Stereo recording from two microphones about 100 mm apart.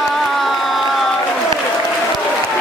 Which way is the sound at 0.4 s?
Centre (ahead or behind).